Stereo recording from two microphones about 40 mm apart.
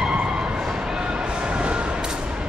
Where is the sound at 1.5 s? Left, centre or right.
Right.